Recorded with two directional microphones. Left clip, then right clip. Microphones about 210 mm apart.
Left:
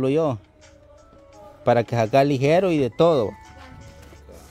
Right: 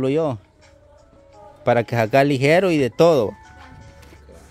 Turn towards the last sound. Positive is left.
turn(degrees=-10)  # may be behind; listen again after turning